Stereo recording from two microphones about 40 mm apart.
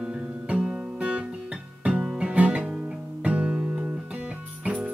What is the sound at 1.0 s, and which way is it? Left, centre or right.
Guitar, right.